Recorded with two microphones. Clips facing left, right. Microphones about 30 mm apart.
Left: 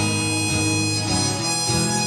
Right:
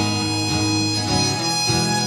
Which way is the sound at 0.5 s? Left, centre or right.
Centre.